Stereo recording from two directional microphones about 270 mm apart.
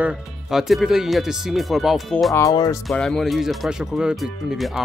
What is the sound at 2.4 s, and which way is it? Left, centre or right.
Speech, centre.